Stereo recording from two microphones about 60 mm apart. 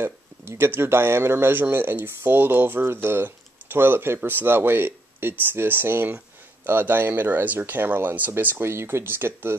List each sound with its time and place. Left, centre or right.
0.0 s speech: right
8.6 s speech: right